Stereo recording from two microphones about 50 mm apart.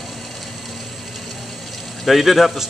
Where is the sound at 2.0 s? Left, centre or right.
Centre.